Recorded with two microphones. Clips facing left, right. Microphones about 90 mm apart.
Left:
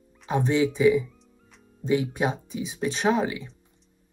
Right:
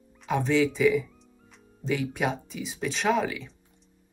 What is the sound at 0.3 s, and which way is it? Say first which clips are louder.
Speech: left 1 dB; 15° left (ahead or behind).